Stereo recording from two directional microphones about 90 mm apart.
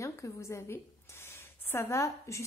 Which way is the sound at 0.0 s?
35° left (ahead or behind).